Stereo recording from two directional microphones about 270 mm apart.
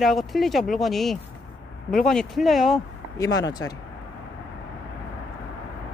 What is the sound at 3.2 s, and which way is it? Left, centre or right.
Speech, centre.